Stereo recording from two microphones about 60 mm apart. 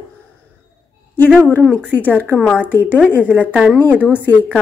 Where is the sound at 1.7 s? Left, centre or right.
Left.